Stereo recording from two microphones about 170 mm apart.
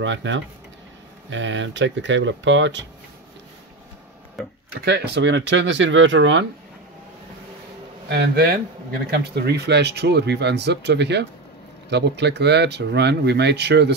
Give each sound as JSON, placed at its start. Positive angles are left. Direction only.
{"t": 0.0, "sound": "speech", "side_deg": -90}
{"t": 4.4, "sound": "speech", "side_deg": 0}
{"t": 4.8, "sound": "speech", "side_deg": -75}
{"t": 8.1, "sound": "speech", "side_deg": -70}